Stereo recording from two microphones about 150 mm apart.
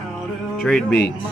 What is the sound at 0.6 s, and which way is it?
Speech, 5° left (ahead or behind).